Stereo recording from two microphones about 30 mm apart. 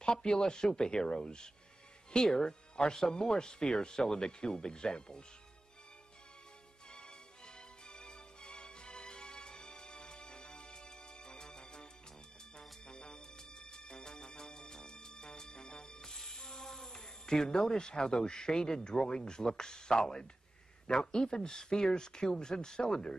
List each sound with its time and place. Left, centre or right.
0.0 s a sound: left
0.5 s speech: left
3.0 s speech: centre
6.9 s music: left
17.6 s speech: left